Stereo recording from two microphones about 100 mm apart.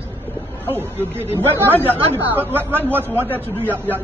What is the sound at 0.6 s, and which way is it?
Speech, 20° right (ahead or behind).